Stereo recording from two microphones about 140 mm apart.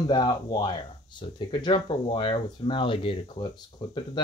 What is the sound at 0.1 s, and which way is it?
Speech, 30° left (ahead or behind).